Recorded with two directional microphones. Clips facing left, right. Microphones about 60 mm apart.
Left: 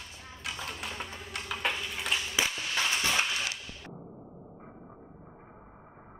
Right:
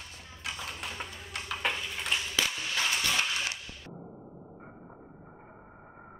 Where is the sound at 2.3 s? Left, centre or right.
Centre.